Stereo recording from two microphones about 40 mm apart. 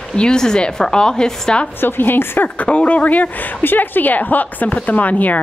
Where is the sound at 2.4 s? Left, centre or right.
Left.